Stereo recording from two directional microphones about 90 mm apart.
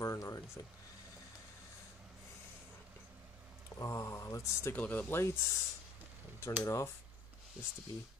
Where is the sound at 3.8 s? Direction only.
35° left (ahead or behind).